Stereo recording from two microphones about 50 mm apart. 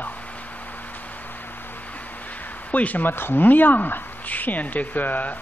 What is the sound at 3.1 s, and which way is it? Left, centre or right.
Speech, left.